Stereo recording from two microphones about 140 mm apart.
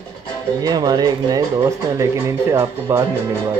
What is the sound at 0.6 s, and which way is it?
Speech, 30° right (ahead or behind).